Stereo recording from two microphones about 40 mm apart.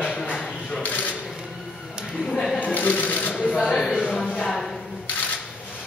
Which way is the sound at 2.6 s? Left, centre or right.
Left.